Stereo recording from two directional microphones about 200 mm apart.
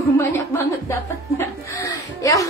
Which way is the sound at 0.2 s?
15° left (ahead or behind).